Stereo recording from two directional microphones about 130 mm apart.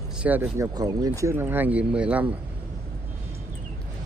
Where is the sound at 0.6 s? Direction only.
30° right (ahead or behind); by 2.4 s 10° right (ahead or behind).